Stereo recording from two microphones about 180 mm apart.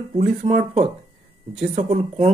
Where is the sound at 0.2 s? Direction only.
40° right (ahead or behind).